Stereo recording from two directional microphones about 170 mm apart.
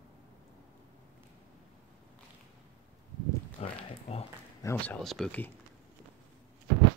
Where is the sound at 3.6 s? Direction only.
40° left (ahead or behind).